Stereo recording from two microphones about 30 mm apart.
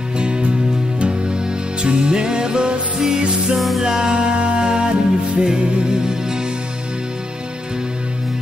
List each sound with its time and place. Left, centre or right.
0.2 s music: right
3.5 s music: centre
3.8 s music: right
6.0 s music: right